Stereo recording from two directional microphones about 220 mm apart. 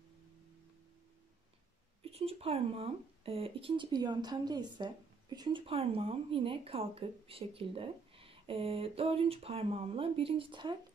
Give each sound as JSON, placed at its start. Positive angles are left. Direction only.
{"t": 2.1, "sound": "speech", "side_deg": -25}